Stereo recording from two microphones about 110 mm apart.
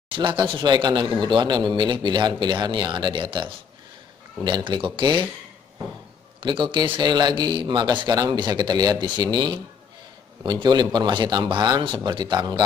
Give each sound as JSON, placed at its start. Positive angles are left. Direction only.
{"t": 0.1, "sound": "speech", "side_deg": -50}
{"t": 6.4, "sound": "a man's voice", "side_deg": -50}